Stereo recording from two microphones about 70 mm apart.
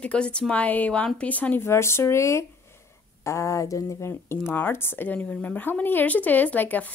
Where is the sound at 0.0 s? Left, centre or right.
Centre.